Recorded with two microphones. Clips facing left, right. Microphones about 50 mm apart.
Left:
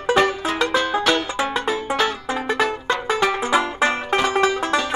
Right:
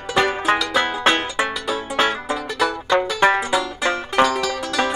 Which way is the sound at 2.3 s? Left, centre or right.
Left.